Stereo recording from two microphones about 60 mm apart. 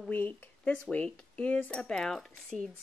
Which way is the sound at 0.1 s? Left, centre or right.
Left.